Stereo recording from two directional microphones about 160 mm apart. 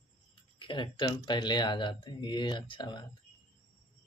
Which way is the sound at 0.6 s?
30° left (ahead or behind).